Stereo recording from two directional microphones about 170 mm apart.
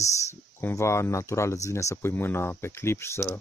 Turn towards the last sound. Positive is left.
turn(degrees=15)  # may be behind; listen again after turning